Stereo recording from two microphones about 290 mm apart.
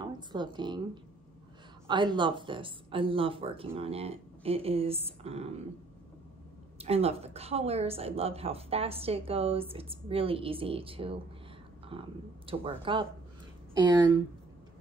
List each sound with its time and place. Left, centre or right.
0.0 s speech: centre
1.9 s a woman's voice: centre
6.8 s a woman's voice: right